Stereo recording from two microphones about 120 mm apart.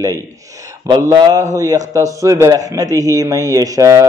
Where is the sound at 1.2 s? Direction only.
35° right (ahead or behind).